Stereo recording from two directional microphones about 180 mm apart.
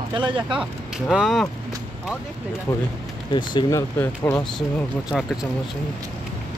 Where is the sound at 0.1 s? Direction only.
25° right (ahead or behind).